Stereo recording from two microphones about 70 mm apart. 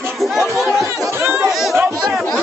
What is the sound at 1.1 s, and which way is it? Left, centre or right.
Chatter, right.